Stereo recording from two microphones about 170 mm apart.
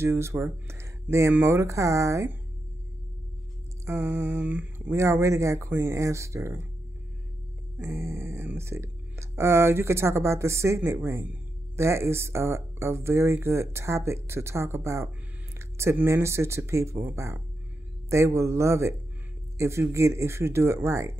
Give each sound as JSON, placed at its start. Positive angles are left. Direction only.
{"t": 0.0, "sound": "speech", "side_deg": -15}
{"t": 3.8, "sound": "speech", "side_deg": -15}
{"t": 7.9, "sound": "speech", "side_deg": -15}